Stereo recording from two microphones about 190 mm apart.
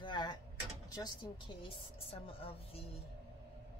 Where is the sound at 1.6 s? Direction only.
30° left (ahead or behind).